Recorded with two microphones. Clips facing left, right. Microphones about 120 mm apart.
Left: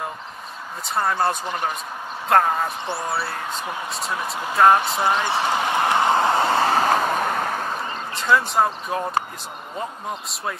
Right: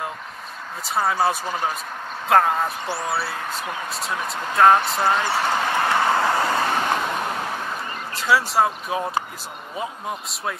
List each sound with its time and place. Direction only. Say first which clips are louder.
0.8 s speech: right 1 dB; 5° right (ahead or behind)
5.0 s speech: even; 20° left (ahead or behind); by 7.6 s 45° left (ahead or behind)
8.1 s speech: even; 5° right (ahead or behind)